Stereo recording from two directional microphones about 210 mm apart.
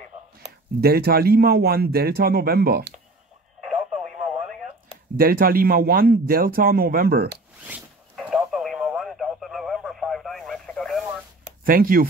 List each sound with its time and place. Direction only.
0.7 s speech: 45° right (ahead or behind)
5.1 s speech: 45° right (ahead or behind)
7.6 s radio: 5° right (ahead or behind)
11.6 s speech: 45° right (ahead or behind)